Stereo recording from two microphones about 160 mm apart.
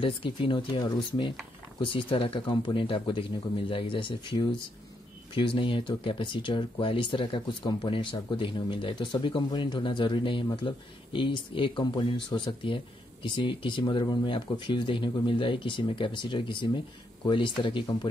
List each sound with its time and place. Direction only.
0.0 s speech: 30° left (ahead or behind)